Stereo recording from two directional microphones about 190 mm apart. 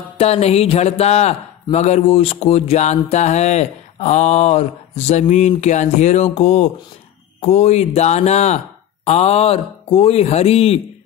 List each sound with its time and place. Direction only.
0.2 s speech: 35° left (ahead or behind)